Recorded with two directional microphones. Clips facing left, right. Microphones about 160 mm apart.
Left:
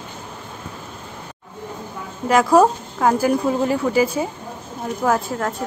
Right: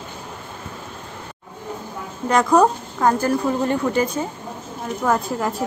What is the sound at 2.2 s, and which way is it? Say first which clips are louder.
A woman's voice: left 2 dB; 5° left (ahead or behind).